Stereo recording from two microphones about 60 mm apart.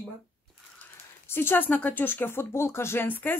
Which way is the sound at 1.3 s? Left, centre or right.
Left.